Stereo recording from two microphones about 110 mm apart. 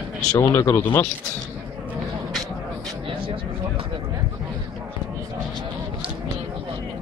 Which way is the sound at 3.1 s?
55° right (ahead or behind).